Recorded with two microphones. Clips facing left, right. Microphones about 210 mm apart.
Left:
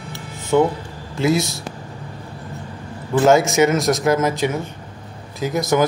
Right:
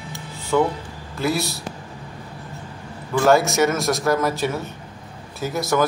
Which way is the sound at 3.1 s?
20° left (ahead or behind).